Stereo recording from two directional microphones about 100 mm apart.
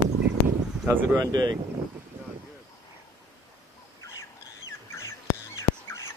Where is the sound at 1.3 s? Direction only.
45° right (ahead or behind).